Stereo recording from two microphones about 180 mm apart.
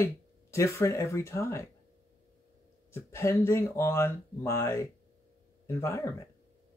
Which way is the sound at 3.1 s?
15° left (ahead or behind).